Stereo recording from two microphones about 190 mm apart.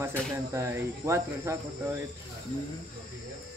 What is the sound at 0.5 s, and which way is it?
Speech, 15° right (ahead or behind).